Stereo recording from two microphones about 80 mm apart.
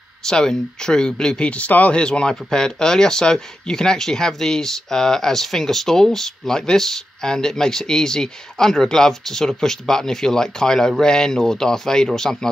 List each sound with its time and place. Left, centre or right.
0.2 s speech: centre